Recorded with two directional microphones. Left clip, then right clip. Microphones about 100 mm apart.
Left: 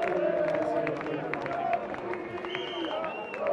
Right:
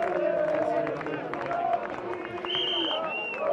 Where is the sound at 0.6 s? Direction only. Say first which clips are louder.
Right 2 dB; centre (ahead or behind).